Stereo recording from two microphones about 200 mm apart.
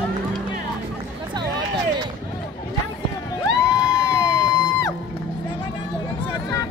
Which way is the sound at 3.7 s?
15° left (ahead or behind).